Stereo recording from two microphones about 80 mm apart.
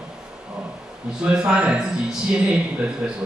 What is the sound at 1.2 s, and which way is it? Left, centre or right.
Speech, centre.